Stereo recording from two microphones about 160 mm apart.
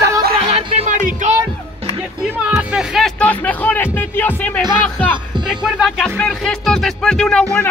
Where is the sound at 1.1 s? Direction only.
50° right (ahead or behind).